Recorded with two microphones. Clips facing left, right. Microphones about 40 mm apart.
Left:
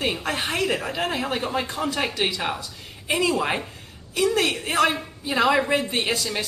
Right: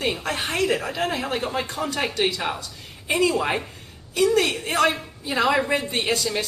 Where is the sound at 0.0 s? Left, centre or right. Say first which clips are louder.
Even; centre.